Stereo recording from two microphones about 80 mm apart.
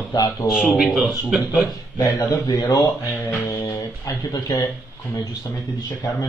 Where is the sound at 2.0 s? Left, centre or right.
Left.